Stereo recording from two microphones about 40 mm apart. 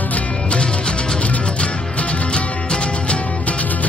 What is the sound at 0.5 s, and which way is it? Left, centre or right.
Music, left.